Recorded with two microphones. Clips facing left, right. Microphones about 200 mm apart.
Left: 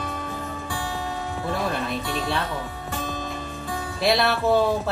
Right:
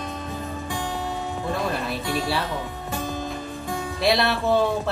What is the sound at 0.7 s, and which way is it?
Music, 15° right (ahead or behind).